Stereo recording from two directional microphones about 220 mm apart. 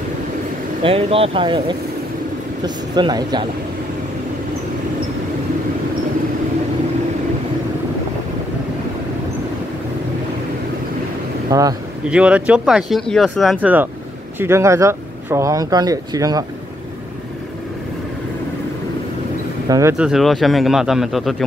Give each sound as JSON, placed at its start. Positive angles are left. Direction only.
{"t": 0.8, "sound": "speech", "side_deg": -25}
{"t": 2.6, "sound": "speech", "side_deg": -20}
{"t": 11.5, "sound": "speech", "side_deg": -15}
{"t": 12.1, "sound": "speech", "side_deg": -5}
{"t": 19.7, "sound": "speech", "side_deg": -15}
{"t": 20.1, "sound": "speech", "side_deg": 0}